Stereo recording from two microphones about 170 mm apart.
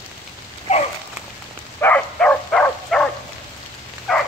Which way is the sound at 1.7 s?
10° left (ahead or behind).